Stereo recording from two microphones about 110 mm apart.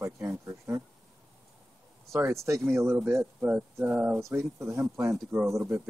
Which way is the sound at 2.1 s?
25° right (ahead or behind).